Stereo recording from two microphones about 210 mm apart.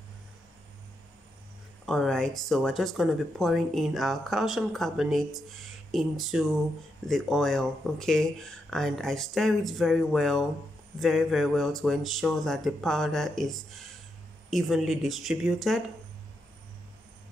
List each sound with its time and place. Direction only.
1.9 s speech: 5° left (ahead or behind)